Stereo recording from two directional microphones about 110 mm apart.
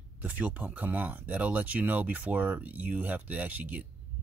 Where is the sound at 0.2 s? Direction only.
15° right (ahead or behind).